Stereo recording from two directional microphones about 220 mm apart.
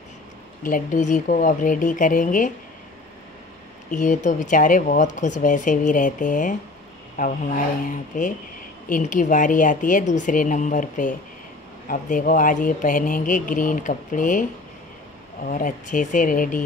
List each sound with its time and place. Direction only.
0.7 s a man's voice: 35° left (ahead or behind)
3.9 s a man's voice: 35° left (ahead or behind)
15.4 s a man's voice: 35° left (ahead or behind)